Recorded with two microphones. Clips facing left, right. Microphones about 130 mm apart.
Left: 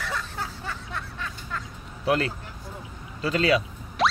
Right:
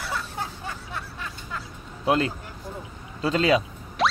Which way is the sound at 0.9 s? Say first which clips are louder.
Even; 15° right (ahead or behind).